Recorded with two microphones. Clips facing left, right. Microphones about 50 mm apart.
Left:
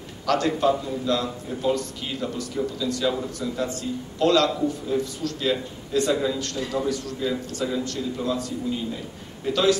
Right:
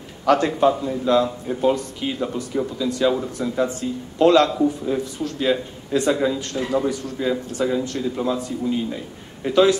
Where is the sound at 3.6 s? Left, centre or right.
Right.